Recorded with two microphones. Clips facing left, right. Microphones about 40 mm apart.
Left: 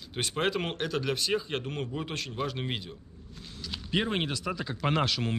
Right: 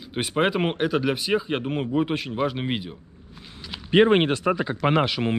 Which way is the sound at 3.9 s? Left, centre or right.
Right.